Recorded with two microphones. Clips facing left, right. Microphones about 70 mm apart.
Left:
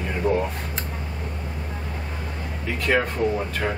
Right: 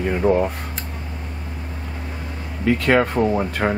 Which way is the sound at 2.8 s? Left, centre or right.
Right.